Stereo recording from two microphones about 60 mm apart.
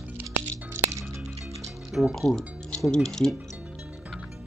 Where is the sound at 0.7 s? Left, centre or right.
Right.